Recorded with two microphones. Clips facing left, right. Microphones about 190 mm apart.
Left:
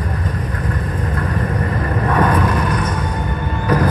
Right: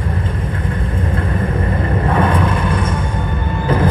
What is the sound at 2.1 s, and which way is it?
Vehicle, 25° right (ahead or behind).